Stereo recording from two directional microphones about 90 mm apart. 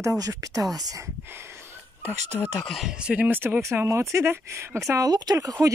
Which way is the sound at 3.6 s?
30° right (ahead or behind).